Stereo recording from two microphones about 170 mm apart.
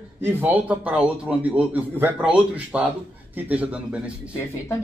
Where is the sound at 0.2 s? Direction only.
10° right (ahead or behind).